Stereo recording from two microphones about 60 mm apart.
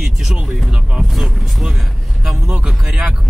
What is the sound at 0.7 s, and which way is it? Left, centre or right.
Speech, centre.